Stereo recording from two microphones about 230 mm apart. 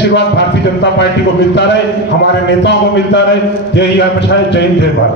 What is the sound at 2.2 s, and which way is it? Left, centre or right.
A man's voice, left.